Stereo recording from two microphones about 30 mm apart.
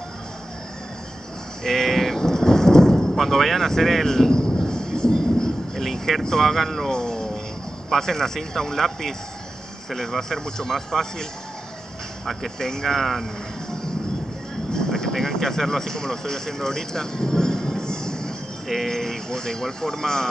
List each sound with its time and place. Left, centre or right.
1.6 s thunder: centre
4.6 s vehicle: left; by 6.2 s centre
6.4 s speech: centre
6.9 s a sound: centre
7.9 s speech: centre
12.5 s speech: centre
14.7 s speech: centre
18.9 s speech: centre